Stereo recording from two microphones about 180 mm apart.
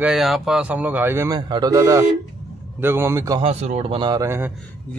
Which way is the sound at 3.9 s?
20° right (ahead or behind).